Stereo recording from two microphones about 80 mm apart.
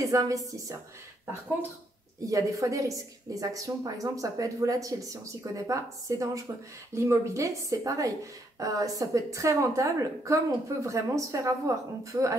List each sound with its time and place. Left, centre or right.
0.0 s a woman's voice: right
2.2 s a woman's voice: right